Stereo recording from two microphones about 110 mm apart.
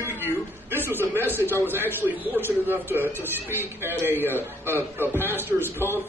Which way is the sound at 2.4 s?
20° right (ahead or behind).